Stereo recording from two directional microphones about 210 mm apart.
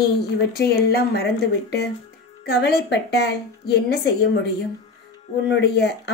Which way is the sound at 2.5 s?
50° left (ahead or behind).